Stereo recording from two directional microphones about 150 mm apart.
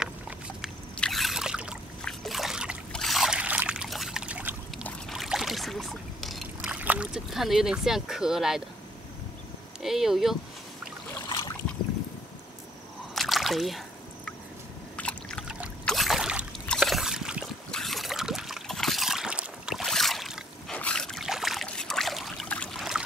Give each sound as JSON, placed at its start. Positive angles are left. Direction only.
{"t": 0.9, "sound": "a sound", "side_deg": 5}
{"t": 2.0, "sound": "trickle", "side_deg": 0}
{"t": 5.1, "sound": "rowboat", "side_deg": 0}
{"t": 9.8, "sound": "speech", "side_deg": 0}
{"t": 11.2, "sound": "boat", "side_deg": 30}
{"t": 13.1, "sound": "a sound", "side_deg": 0}
{"t": 15.0, "sound": "trickle", "side_deg": 5}
{"t": 15.8, "sound": "a sound", "side_deg": 0}
{"t": 20.7, "sound": "trickle", "side_deg": 5}